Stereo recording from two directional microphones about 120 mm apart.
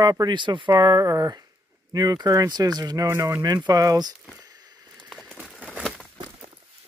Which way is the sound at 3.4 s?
35° right (ahead or behind).